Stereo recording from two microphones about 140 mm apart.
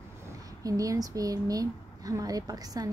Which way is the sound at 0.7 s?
25° right (ahead or behind).